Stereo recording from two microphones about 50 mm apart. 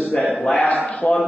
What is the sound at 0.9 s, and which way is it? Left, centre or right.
Speech, left.